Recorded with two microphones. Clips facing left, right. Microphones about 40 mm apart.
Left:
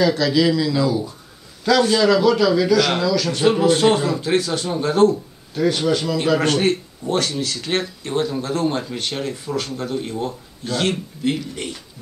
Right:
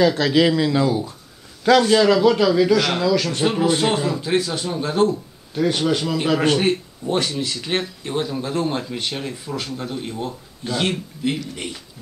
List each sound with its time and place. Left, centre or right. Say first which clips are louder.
0.1 s speech: even; right
1.9 s a man's voice: right 1 dB; centre
3.4 s speech: left 5 dB; centre
5.5 s a man's voice: left 1 dB; centre
6.3 s a man's voice: right 1 dB; centre